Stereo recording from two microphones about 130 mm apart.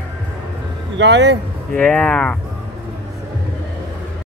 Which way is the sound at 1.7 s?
10° left (ahead or behind).